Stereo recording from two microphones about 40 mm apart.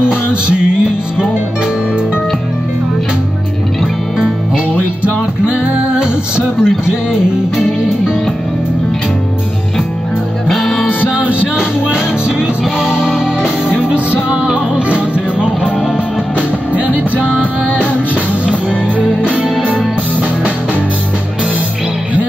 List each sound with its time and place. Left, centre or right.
5.0 s music: right
10.5 s music: centre
11.1 s music: right
11.5 s music: right
16.3 s music: right